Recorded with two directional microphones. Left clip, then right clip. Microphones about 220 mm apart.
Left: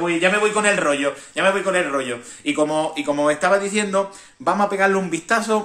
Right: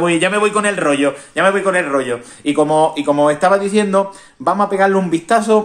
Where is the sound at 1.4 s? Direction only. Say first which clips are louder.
Right 4 dB; 15° right (ahead or behind).